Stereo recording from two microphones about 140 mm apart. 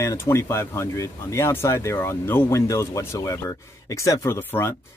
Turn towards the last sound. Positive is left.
turn(degrees=15)  # may be behind; listen again after turning